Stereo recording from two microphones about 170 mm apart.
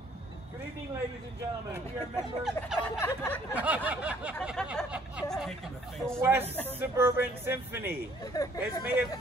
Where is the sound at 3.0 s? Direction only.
15° left (ahead or behind).